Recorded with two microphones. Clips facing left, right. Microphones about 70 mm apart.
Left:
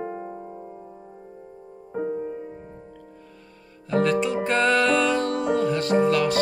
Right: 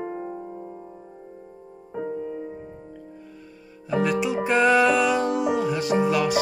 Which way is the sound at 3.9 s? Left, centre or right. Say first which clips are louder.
Left 1 dB; centre.